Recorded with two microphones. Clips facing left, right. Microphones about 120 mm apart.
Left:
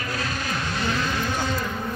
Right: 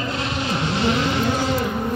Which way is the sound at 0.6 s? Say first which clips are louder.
Right 7 dB; 25° right (ahead or behind).